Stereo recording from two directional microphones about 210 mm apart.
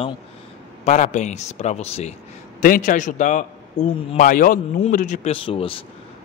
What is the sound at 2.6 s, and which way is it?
Speech, 40° left (ahead or behind).